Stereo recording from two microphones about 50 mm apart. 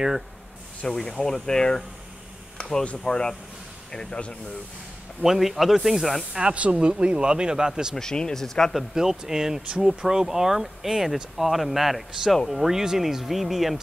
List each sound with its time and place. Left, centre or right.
0.8 s speech: centre
5.2 s speech: centre
6.3 s speech: right
7.9 s speech: centre
8.7 s speech: centre